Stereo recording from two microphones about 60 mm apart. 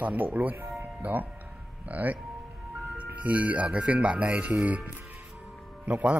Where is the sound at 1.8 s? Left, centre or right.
Right.